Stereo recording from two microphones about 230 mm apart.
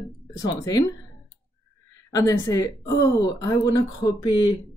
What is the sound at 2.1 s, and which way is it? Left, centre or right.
Speech, centre.